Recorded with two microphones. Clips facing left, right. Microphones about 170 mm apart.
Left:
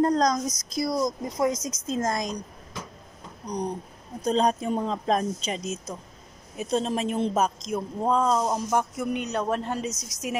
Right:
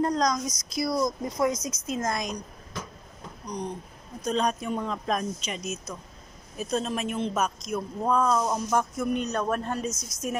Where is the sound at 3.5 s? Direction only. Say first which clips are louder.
Left 4 dB; 35° left (ahead or behind); by 9.9 s 20° left (ahead or behind).